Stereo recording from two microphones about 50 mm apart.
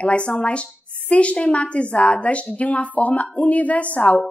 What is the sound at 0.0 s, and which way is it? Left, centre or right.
A woman's voice, left.